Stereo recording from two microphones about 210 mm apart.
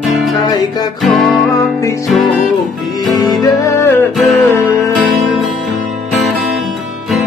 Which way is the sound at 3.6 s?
15° left (ahead or behind).